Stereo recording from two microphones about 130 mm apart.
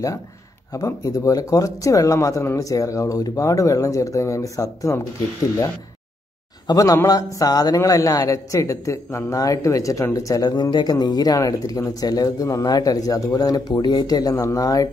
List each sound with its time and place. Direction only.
0.7 s a man's voice: 25° left (ahead or behind)
6.7 s a man's voice: 30° left (ahead or behind)